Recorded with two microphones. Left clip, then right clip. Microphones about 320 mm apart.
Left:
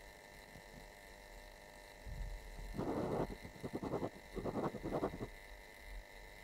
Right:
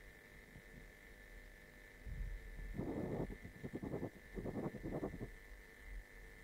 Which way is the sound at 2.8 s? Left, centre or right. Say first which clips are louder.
Left 5 dB; left.